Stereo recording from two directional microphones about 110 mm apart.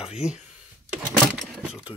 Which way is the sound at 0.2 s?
25° left (ahead or behind).